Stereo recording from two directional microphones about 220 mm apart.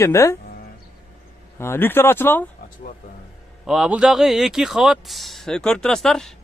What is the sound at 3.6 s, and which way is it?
Speech, centre (ahead or behind).